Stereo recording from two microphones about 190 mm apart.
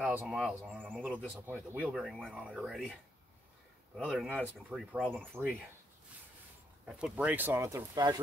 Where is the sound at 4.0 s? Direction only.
5° right (ahead or behind).